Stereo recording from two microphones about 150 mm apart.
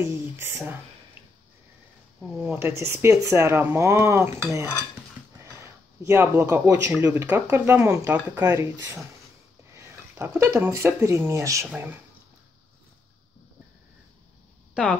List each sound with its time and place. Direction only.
0.0 s speech: 15° right (ahead or behind)
2.1 s speech: centre (ahead or behind)
2.5 s speech: 15° right (ahead or behind)
6.0 s speech: 15° right (ahead or behind)